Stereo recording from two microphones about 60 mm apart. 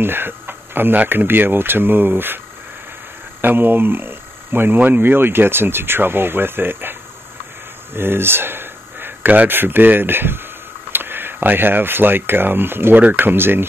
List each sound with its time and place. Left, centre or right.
0.0 s speech: right